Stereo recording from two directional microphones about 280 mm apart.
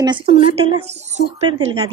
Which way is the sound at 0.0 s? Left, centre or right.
Centre.